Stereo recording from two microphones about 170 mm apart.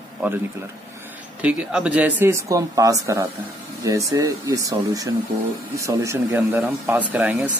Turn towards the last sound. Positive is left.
turn(degrees=-10)  # may be behind; listen again after turning